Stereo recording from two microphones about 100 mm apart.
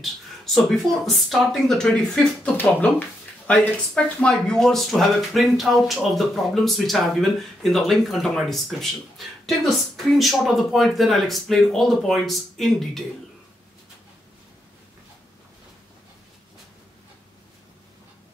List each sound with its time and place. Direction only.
0.6 s speech: centre (ahead or behind)
2.4 s speech: 15° left (ahead or behind)
9.9 s speech: centre (ahead or behind)